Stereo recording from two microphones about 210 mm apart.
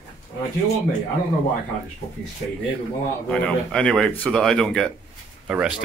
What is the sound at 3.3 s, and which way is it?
Speech, 5° left (ahead or behind).